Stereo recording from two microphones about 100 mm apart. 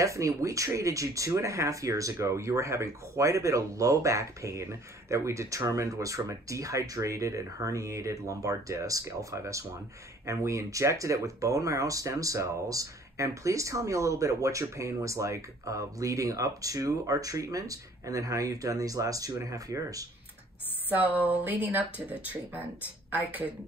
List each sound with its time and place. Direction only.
0.0 s speech: 35° right (ahead or behind)
20.9 s speech: 15° right (ahead or behind)